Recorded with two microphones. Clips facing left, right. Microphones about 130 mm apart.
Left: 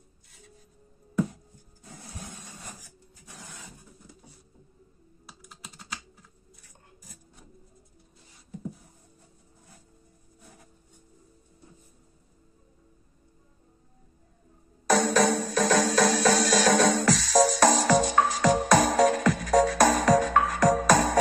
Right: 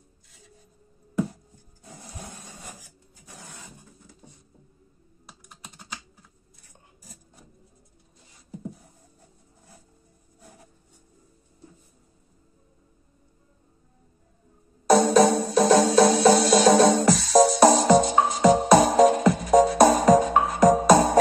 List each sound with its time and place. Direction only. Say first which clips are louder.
14.9 s music: right 5 dB; 30° right (ahead or behind)